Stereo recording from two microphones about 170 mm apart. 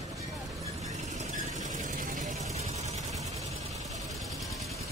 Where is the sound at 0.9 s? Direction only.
45° right (ahead or behind).